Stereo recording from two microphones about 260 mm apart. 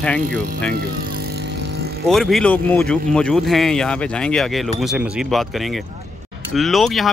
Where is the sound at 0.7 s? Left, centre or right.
Right.